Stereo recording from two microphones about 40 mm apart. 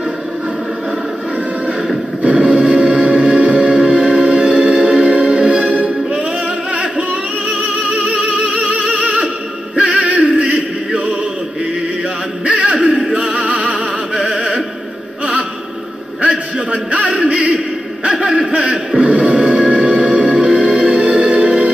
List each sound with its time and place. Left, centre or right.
2.2 s music: right
12.4 s music: right
16.2 s a sound: right
18.0 s music: right